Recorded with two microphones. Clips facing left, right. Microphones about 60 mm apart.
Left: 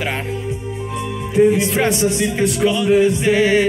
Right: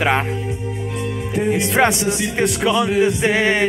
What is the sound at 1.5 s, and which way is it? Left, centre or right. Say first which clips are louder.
Speech: right 1 dB; right.